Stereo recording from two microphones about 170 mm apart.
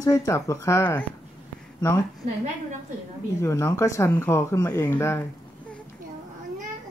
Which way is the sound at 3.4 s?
15° left (ahead or behind).